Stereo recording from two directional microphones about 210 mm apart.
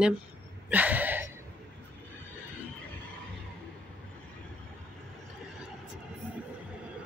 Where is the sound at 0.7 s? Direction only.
10° right (ahead or behind).